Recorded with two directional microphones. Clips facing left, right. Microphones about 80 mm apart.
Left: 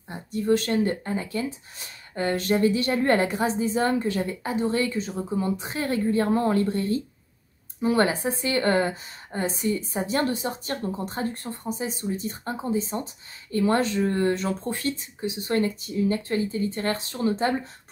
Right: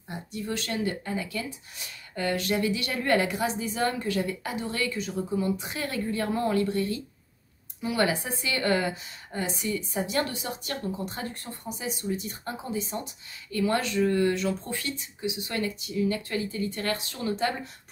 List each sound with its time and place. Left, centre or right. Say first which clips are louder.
0.1 s a woman's voice: left 10 dB; left